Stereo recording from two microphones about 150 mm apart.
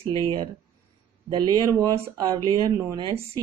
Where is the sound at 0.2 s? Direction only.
30° right (ahead or behind).